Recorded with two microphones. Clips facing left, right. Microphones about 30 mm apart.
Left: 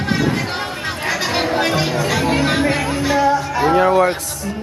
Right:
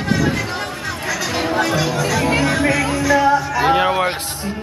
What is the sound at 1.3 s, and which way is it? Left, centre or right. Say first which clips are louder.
Music: even; left.